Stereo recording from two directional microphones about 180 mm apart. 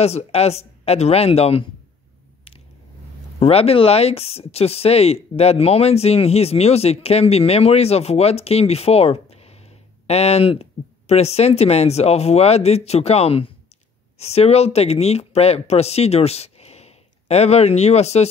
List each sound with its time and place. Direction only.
0.0 s speech: 35° left (ahead or behind)
3.3 s speech: 35° left (ahead or behind)